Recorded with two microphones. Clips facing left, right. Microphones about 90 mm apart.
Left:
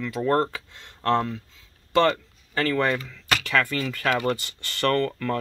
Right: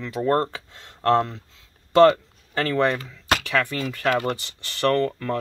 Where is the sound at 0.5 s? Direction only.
35° right (ahead or behind).